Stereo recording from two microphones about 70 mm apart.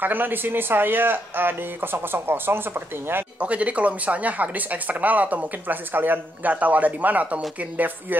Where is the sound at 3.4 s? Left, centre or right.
Centre.